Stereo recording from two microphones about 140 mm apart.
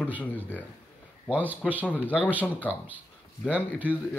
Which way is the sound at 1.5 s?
10° right (ahead or behind).